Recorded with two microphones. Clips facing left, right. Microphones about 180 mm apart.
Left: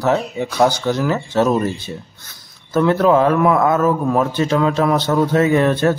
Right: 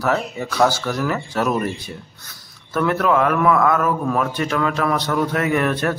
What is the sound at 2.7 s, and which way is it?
Speech, 25° left (ahead or behind).